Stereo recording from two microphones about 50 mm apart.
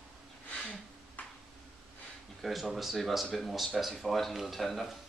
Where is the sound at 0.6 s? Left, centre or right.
Left.